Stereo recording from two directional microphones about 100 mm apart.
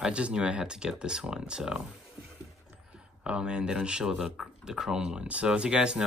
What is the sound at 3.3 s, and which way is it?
Speech, 10° right (ahead or behind).